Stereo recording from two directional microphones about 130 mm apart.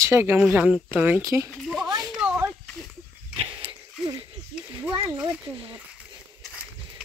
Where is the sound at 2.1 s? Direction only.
10° right (ahead or behind).